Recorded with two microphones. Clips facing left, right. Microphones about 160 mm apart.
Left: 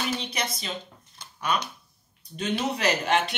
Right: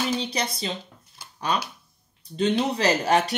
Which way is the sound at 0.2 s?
30° right (ahead or behind).